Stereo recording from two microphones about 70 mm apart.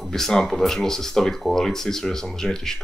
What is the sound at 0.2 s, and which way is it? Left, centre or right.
Speech, centre.